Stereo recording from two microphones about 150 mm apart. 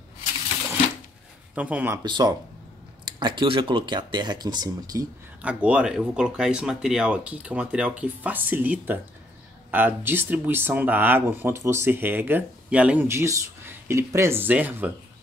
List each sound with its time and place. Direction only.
1.5 s speech: 10° right (ahead or behind)
2.0 s speech: 30° right (ahead or behind)
5.4 s speech: 10° right (ahead or behind)